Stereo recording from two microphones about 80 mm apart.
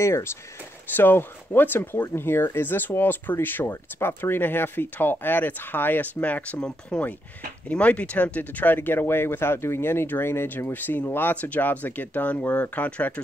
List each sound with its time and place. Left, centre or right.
0.0 s speech: left; by 13.2 s centre